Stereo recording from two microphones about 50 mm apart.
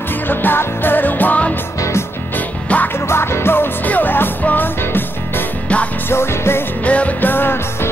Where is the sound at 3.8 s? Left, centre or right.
Left.